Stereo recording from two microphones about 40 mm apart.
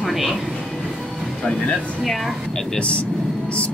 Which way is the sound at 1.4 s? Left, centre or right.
Left.